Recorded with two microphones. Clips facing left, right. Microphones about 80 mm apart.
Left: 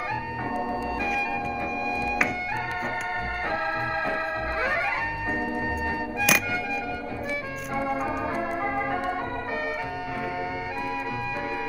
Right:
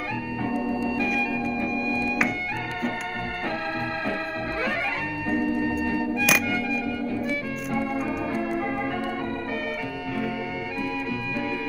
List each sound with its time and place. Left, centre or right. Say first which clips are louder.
0.5 s organ: right 3 dB; centre
1.6 s music: right 2 dB; centre
5.3 s organ: right 7 dB; centre
6.2 s music: left 2 dB; centre
8.4 s organ: right 1 dB; left